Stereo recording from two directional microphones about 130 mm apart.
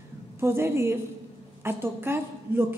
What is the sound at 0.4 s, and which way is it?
A woman's voice, 20° right (ahead or behind).